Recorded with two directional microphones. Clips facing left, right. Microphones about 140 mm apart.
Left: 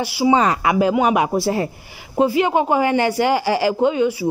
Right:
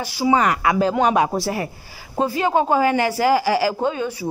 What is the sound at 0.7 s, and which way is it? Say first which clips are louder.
Speech: left 2 dB; 15° left (ahead or behind).